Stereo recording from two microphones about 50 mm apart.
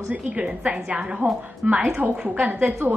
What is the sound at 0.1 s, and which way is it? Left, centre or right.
A woman's voice, right.